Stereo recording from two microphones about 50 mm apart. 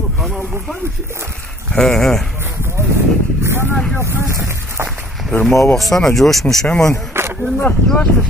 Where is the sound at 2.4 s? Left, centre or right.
Right.